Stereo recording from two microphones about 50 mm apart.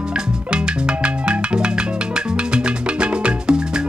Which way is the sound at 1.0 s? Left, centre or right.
Right.